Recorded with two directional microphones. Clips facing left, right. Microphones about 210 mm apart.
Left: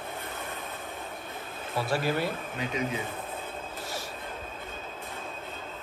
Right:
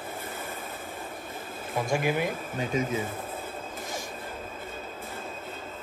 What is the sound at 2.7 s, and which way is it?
Speech, 45° right (ahead or behind).